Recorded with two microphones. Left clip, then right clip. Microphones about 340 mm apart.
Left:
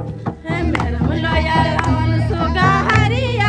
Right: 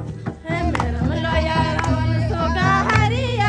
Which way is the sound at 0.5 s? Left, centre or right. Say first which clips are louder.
Left 2 dB; left.